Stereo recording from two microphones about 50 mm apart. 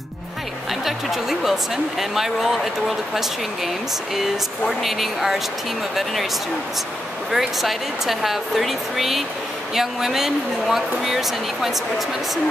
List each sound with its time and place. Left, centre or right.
0.8 s speech: centre
7.3 s speech: centre